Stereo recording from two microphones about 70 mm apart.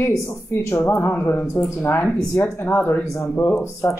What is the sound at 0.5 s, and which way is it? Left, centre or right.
Speech, left.